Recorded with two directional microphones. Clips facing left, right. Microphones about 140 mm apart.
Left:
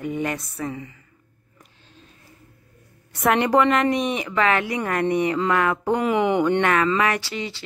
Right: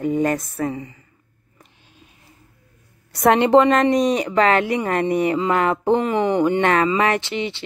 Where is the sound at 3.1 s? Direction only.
35° right (ahead or behind).